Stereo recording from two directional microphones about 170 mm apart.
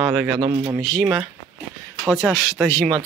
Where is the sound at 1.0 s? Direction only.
10° right (ahead or behind).